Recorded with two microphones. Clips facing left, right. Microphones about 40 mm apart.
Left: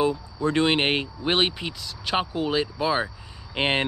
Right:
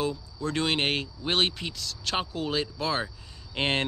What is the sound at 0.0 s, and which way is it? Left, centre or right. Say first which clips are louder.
Speech: left 6 dB; left.